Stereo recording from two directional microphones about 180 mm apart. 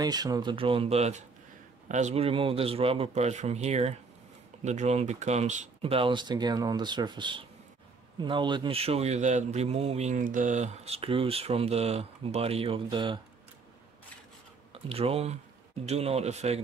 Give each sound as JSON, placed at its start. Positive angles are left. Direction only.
{"t": 0.0, "sound": "a man's voice", "side_deg": -20}
{"t": 14.7, "sound": "a man's voice", "side_deg": -35}